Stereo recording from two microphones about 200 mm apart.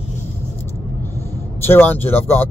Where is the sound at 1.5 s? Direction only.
10° left (ahead or behind).